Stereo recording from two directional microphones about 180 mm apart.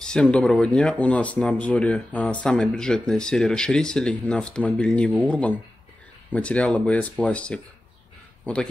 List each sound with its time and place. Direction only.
0.0 s speech: 5° left (ahead or behind)